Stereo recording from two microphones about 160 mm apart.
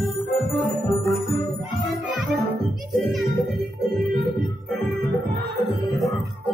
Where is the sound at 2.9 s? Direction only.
Centre (ahead or behind).